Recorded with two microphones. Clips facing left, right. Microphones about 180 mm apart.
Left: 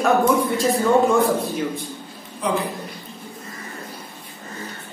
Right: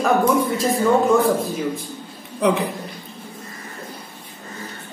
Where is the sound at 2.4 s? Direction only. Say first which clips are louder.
Right 5 dB; 65° right (ahead or behind).